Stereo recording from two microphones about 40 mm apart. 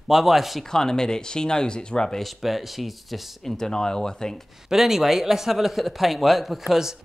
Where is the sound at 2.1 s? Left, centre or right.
Centre.